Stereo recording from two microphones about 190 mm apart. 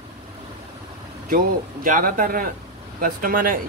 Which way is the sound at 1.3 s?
45° right (ahead or behind).